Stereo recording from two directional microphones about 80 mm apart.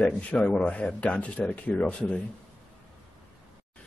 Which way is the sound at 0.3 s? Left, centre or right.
Centre.